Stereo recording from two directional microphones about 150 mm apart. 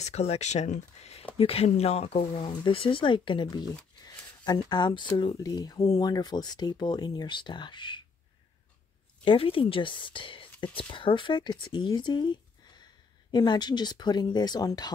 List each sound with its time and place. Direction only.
0.0 s speech: 45° left (ahead or behind)
2.3 s speech: 30° left (ahead or behind)
4.0 s a sound: 30° left (ahead or behind)
5.1 s speech: 30° left (ahead or behind)
9.2 s speech: 35° left (ahead or behind)